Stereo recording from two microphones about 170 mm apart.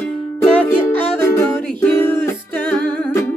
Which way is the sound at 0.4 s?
10° left (ahead or behind).